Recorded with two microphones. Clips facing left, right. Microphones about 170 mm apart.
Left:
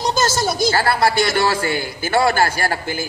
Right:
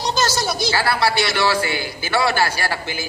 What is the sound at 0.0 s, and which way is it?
A man's voice, 45° left (ahead or behind).